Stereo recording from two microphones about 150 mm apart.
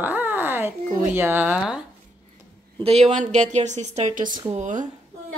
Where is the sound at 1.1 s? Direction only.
15° right (ahead or behind).